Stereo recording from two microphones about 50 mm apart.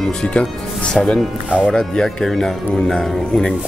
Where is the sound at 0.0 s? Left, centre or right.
Left.